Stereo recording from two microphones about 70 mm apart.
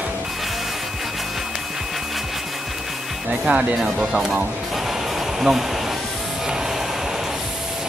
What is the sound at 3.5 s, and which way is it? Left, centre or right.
Speech, centre.